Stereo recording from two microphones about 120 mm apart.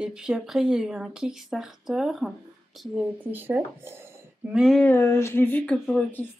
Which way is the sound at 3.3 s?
15° right (ahead or behind).